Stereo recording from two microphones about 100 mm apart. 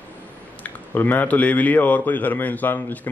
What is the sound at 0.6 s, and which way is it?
A man's voice, 20° left (ahead or behind).